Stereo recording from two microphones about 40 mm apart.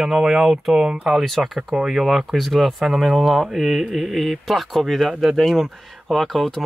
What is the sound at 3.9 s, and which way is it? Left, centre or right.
Speech, centre.